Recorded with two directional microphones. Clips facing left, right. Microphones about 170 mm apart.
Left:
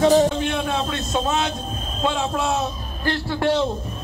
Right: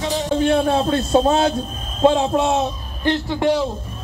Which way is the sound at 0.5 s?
35° right (ahead or behind).